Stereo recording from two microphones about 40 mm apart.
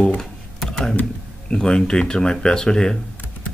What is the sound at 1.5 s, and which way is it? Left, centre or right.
Speech, centre.